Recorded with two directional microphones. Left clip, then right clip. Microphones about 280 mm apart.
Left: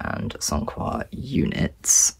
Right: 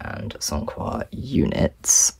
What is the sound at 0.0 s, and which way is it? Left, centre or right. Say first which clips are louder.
Speech: left 2 dB; centre.